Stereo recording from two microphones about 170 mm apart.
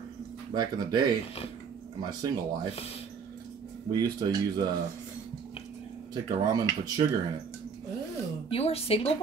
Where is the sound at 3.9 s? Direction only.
25° right (ahead or behind).